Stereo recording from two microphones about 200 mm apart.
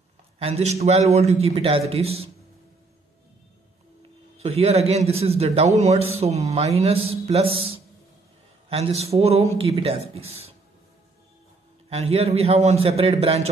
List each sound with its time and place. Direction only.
0.4 s a man's voice: 30° right (ahead or behind)
4.4 s a man's voice: 30° right (ahead or behind)
11.9 s a man's voice: 30° right (ahead or behind)